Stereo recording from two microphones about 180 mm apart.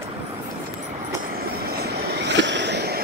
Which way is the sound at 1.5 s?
60° right (ahead or behind).